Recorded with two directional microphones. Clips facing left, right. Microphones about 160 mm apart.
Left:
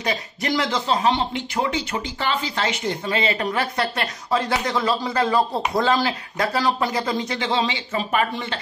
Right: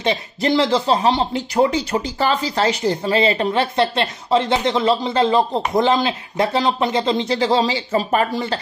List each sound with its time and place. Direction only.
0.0 s speech: 25° right (ahead or behind)